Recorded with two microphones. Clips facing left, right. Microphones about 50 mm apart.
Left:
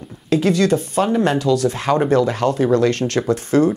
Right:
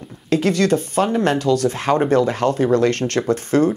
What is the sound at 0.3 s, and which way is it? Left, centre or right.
Speech, right.